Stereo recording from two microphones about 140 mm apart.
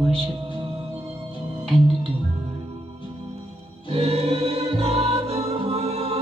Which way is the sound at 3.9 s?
45° right (ahead or behind).